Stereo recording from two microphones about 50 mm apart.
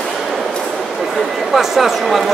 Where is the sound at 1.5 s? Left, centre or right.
Centre.